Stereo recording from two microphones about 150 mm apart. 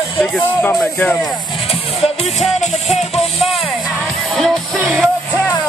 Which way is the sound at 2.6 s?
50° left (ahead or behind).